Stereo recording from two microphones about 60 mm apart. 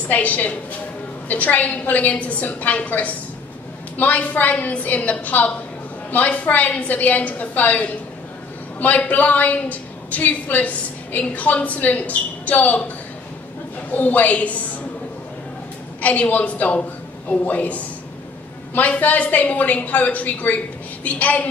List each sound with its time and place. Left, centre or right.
0.1 s a woman's voice: left
13.9 s a woman's voice: left
16.0 s a woman's voice: left
18.8 s a woman's voice: left